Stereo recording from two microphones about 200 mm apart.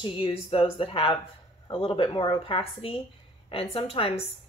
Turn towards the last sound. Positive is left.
turn(degrees=30)  # may be behind; listen again after turning